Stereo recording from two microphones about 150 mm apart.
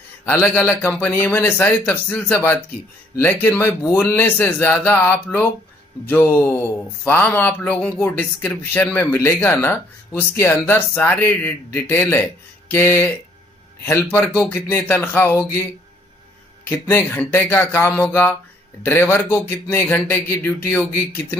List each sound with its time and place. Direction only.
0.2 s speech: 15° left (ahead or behind)
14.1 s speech: 10° left (ahead or behind)
16.6 s speech: 15° left (ahead or behind)